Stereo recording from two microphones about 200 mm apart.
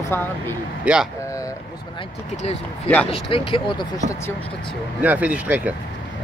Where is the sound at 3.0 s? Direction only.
25° left (ahead or behind).